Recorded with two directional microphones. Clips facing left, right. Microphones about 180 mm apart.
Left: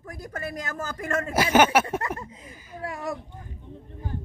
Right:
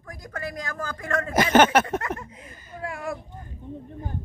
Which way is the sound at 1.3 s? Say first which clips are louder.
Right 2 dB; 10° left (ahead or behind).